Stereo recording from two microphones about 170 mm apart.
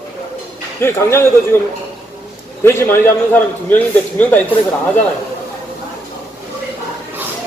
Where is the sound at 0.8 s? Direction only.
15° left (ahead or behind).